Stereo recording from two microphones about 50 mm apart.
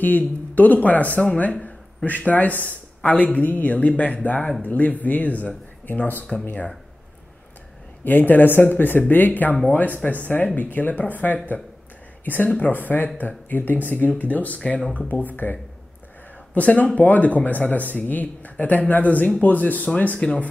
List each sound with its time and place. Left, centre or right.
0.0 s speech: left
8.0 s speech: left
16.5 s speech: left